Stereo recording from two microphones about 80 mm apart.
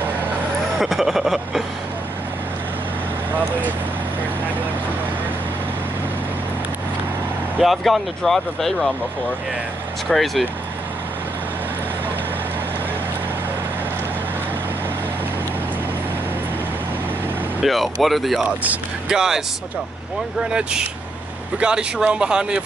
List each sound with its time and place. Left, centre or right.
0.7 s speech: centre
7.6 s speech: centre
10.0 s speech: centre
17.6 s speech: centre
18.4 s speech: centre
19.1 s a man's voice: centre
21.5 s a man's voice: centre